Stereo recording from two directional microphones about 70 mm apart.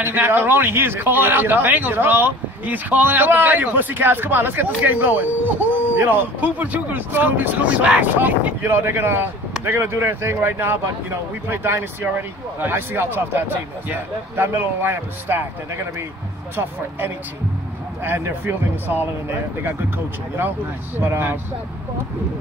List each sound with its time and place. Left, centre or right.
0.0 s a man's voice: right
8.6 s speech: right
18.0 s speech: right
21.0 s speech: right